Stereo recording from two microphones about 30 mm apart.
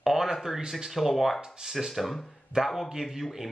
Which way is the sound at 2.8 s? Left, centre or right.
Centre.